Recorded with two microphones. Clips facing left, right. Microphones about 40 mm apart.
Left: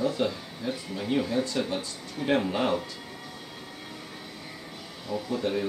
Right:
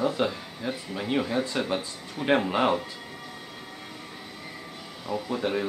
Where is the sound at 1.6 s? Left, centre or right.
Right.